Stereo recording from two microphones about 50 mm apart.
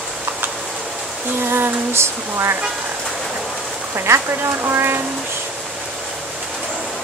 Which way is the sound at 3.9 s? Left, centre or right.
Right.